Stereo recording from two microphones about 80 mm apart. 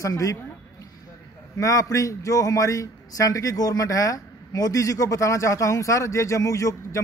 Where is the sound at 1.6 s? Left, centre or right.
Left.